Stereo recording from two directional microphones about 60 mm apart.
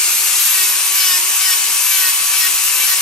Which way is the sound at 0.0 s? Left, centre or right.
Centre.